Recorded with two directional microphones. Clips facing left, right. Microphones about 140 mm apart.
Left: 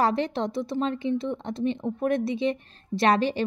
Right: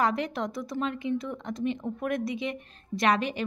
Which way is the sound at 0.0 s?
30° left (ahead or behind).